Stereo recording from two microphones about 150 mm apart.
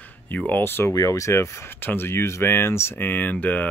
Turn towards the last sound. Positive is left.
turn(degrees=10)  # may be behind; listen again after turning